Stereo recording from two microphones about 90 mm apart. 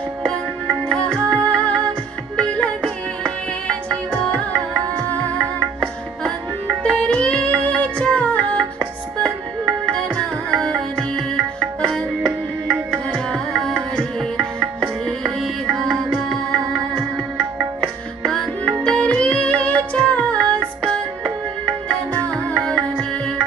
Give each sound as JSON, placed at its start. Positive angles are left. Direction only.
{"t": 0.8, "sound": "music", "side_deg": 10}
{"t": 6.8, "sound": "music", "side_deg": 10}
{"t": 9.8, "sound": "music", "side_deg": 10}
{"t": 12.3, "sound": "music", "side_deg": -15}
{"t": 13.1, "sound": "tabla", "side_deg": 5}
{"t": 15.2, "sound": "music", "side_deg": 0}
{"t": 18.2, "sound": "music", "side_deg": 5}
{"t": 22.1, "sound": "music", "side_deg": 15}